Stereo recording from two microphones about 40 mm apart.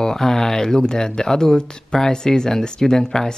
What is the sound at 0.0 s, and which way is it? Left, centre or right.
Speech, centre.